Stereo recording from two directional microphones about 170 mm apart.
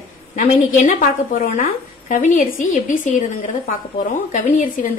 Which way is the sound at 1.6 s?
50° left (ahead or behind).